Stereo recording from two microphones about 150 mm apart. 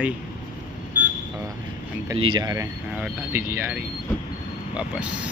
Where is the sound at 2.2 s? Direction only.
30° right (ahead or behind).